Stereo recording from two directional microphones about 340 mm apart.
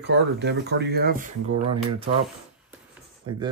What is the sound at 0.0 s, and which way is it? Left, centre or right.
Speech, right.